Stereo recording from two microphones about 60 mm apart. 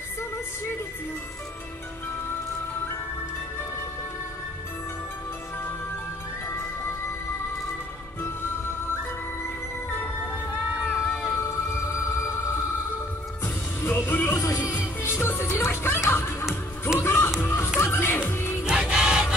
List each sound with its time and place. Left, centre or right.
8.2 s music: left
9.8 s music: left
10.7 s run: centre
11.3 s music: left
13.7 s music: left
18.6 s music: centre